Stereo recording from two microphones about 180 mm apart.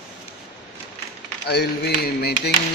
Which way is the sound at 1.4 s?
65° left (ahead or behind).